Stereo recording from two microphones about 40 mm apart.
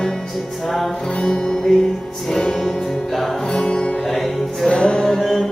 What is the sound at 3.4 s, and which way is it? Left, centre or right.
Music, centre.